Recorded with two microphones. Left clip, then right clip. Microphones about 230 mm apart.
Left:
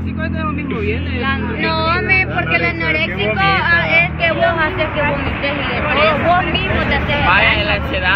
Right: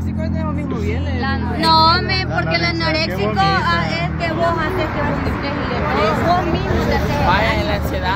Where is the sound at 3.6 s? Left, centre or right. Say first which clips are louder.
Left 6 dB; centre.